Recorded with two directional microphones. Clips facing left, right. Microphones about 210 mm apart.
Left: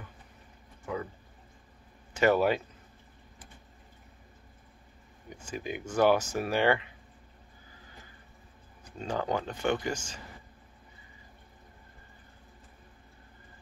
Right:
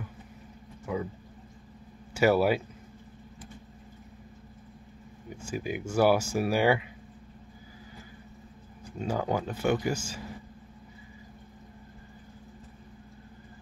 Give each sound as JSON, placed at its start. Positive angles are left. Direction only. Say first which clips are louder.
{"t": 0.9, "sound": "speech", "louder": "right 3 dB", "side_deg": -10}
{"t": 2.1, "sound": "speech", "louder": "right 1 dB", "side_deg": -10}
{"t": 5.4, "sound": "speech", "louder": "right 3 dB", "side_deg": -10}
{"t": 8.8, "sound": "speech", "louder": "right 2 dB", "side_deg": -10}